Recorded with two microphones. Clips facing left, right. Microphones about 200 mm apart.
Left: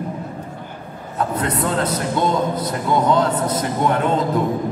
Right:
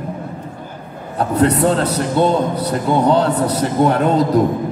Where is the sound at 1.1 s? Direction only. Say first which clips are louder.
Right 7 dB; 35° right (ahead or behind).